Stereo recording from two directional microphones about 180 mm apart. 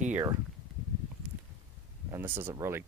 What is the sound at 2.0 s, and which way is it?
Speech, 15° right (ahead or behind).